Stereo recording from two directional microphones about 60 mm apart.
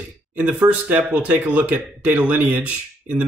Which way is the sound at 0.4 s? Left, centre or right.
Right.